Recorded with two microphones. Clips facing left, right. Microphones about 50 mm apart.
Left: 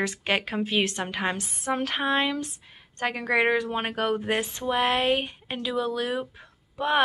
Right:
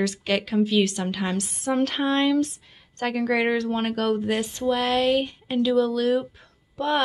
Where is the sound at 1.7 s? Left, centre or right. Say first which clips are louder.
Right 3 dB; centre.